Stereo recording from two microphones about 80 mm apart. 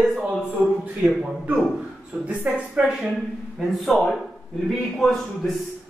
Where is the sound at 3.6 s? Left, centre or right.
Centre.